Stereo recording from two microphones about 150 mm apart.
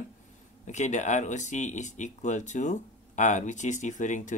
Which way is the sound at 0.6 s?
50° left (ahead or behind).